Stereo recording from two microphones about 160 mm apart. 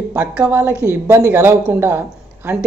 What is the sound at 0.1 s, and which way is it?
A woman's voice, 10° right (ahead or behind).